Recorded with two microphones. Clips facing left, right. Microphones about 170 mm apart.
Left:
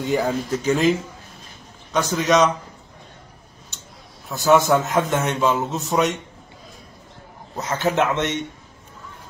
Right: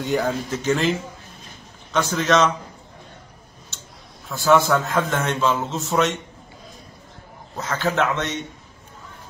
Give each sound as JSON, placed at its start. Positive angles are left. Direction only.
{"t": 0.0, "sound": "speech", "side_deg": 0}
{"t": 2.0, "sound": "a man's voice", "side_deg": 5}
{"t": 4.3, "sound": "a man's voice", "side_deg": 20}
{"t": 7.5, "sound": "speech", "side_deg": 20}